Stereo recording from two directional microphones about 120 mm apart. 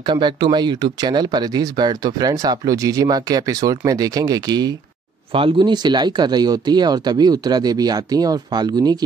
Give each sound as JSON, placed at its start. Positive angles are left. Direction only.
{"t": 0.0, "sound": "speech", "side_deg": -40}
{"t": 5.3, "sound": "speech", "side_deg": -45}